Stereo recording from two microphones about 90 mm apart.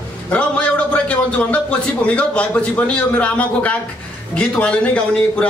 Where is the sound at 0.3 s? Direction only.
15° left (ahead or behind).